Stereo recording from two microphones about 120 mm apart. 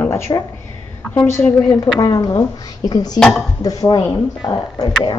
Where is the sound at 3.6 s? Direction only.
30° left (ahead or behind).